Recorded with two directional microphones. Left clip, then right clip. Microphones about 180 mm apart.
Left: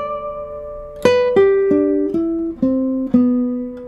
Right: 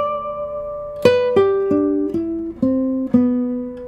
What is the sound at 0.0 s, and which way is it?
Music, 15° left (ahead or behind).